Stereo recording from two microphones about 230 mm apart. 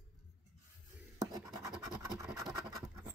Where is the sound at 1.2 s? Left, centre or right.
Centre.